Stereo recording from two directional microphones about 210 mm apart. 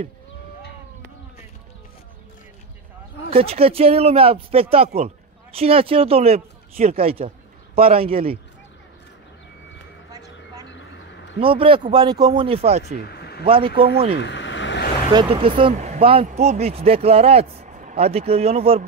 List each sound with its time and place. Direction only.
3.3 s speech: 30° right (ahead or behind)
10.1 s vehicle: 20° right (ahead or behind)
10.7 s vehicle: 60° left (ahead or behind)
11.3 s speech: 25° right (ahead or behind)
13.0 s a sound: 50° left (ahead or behind)
13.5 s speech: 25° right (ahead or behind)
14.1 s a sound: 55° left (ahead or behind)
15.1 s speech: 25° right (ahead or behind)